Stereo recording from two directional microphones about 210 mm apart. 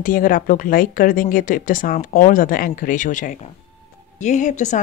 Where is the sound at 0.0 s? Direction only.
40° left (ahead or behind).